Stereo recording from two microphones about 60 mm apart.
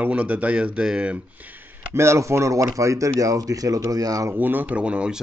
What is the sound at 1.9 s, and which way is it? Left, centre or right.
Speech, right.